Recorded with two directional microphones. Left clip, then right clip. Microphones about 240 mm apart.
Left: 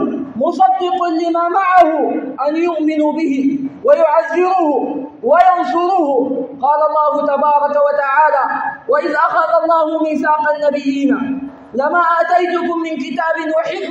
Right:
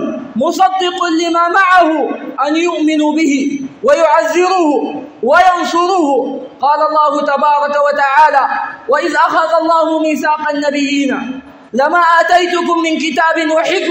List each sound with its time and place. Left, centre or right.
0.4 s speech: right